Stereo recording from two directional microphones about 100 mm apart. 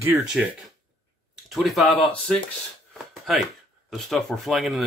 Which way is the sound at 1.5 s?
Centre (ahead or behind).